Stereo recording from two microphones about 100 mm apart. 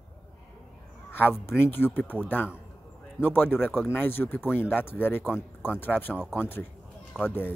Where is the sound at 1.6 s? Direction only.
20° left (ahead or behind).